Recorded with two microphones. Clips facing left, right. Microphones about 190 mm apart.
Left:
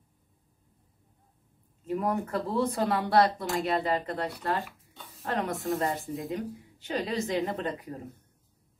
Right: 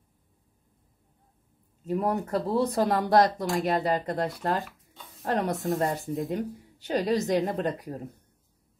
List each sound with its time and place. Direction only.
1.9 s speech: 35° right (ahead or behind)
5.9 s speech: centre (ahead or behind)
6.3 s speech: 40° right (ahead or behind)